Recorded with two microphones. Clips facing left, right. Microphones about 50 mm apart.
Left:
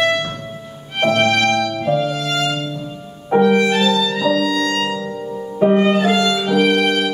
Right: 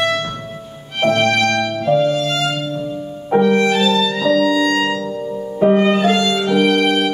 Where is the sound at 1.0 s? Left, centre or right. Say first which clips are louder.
Even; centre.